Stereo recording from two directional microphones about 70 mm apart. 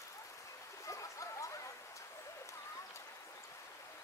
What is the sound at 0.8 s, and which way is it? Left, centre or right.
Stream, left.